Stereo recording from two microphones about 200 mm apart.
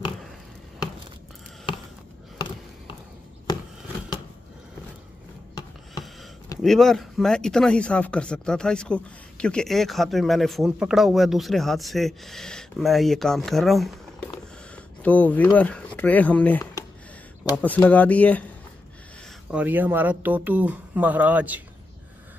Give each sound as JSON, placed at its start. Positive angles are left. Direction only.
{"t": 2.3, "sound": "a sound", "side_deg": 25}
{"t": 6.6, "sound": "speech", "side_deg": 0}
{"t": 15.0, "sound": "speech", "side_deg": 10}
{"t": 19.5, "sound": "speech", "side_deg": -10}